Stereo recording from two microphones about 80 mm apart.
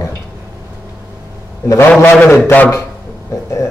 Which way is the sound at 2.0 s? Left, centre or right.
Left.